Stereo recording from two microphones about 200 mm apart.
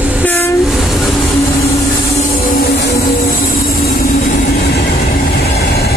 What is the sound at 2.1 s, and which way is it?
Train, 45° left (ahead or behind).